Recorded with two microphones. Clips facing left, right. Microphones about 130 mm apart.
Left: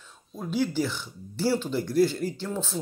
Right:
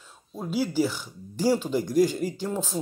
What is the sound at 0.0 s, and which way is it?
Speech, 10° right (ahead or behind).